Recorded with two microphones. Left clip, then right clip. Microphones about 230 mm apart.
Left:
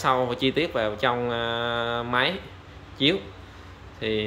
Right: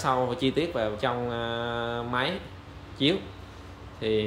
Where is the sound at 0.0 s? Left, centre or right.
Centre.